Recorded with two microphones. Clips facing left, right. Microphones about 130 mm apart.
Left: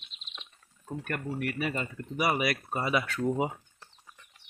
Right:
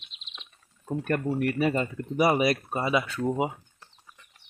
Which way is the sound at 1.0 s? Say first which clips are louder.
Right 7 dB; 35° right (ahead or behind).